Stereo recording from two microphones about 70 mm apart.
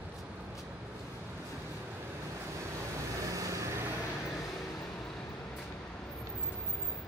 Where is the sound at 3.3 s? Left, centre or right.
Right.